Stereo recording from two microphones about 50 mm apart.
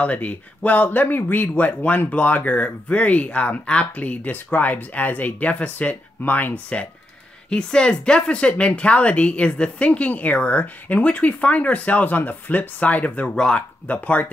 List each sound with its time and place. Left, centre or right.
0.0 s speech: left
7.4 s a woman's voice: centre
13.3 s speech: centre
13.8 s a woman's voice: left